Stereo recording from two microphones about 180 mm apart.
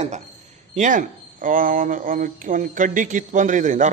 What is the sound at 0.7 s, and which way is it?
Speech, 45° right (ahead or behind).